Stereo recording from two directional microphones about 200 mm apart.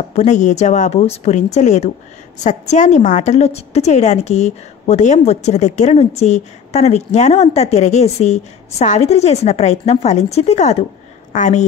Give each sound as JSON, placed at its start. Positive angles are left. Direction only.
{"t": 0.1, "sound": "a woman's voice", "side_deg": 35}